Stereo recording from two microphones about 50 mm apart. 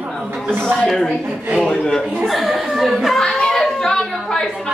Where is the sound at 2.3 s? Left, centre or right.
Centre.